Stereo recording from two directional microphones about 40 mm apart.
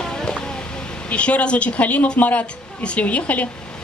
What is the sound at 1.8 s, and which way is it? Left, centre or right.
A woman's voice, left.